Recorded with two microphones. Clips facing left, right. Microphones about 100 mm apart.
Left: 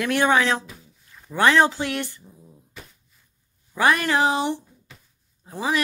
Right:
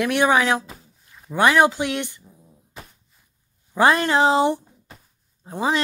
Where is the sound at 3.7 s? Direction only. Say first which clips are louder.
Right 3 dB; 25° right (ahead or behind).